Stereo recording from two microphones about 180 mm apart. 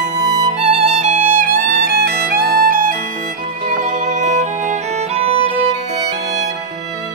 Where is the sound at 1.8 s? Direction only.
55° right (ahead or behind).